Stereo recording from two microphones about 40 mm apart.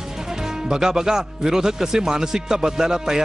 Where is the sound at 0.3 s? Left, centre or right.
Centre.